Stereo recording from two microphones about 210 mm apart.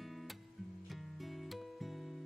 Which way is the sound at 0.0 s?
Centre (ahead or behind).